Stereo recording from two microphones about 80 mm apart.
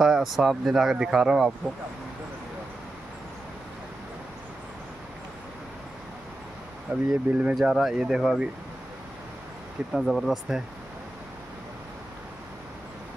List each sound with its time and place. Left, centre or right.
0.0 s speech: centre
6.9 s speech: centre
9.9 s speech: centre